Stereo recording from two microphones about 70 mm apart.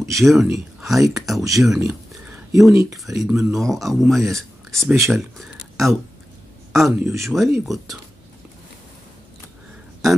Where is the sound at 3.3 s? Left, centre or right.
Centre.